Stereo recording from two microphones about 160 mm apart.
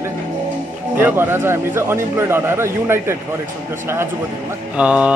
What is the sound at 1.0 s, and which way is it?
A man's voice, 15° right (ahead or behind).